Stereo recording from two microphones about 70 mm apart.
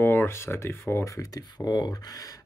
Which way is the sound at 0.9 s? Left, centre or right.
Left.